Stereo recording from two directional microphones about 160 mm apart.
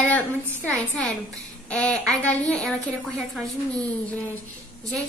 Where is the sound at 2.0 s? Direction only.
5° left (ahead or behind).